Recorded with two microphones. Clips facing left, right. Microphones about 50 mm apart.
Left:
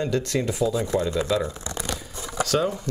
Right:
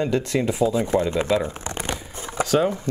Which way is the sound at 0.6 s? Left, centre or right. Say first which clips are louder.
Right 3 dB; right.